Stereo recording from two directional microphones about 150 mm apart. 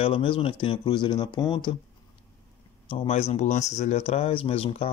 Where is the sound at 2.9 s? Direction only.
40° left (ahead or behind).